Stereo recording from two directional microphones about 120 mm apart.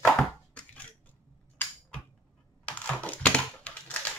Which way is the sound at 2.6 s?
10° left (ahead or behind).